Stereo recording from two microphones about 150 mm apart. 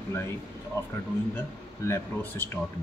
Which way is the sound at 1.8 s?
15° left (ahead or behind).